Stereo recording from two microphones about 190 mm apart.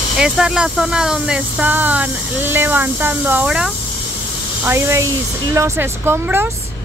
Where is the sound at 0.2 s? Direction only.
5° right (ahead or behind).